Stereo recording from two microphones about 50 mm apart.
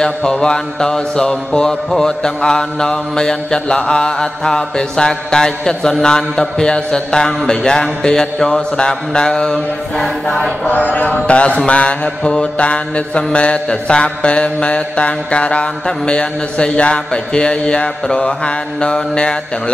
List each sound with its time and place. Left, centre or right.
0.0 s mantra: centre
10.7 s mantra: left; by 19.3 s centre